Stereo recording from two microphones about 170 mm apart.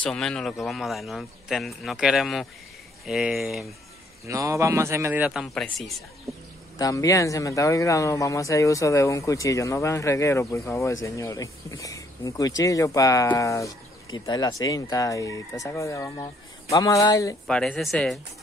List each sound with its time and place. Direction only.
0.0 s speech: 5° left (ahead or behind)
4.3 s speech: 20° right (ahead or behind); by 5.9 s centre (ahead or behind)
6.8 s speech: 20° left (ahead or behind)
17.5 s speech: 5° left (ahead or behind)